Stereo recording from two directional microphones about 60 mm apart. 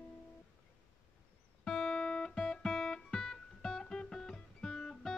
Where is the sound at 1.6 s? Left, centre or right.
Centre.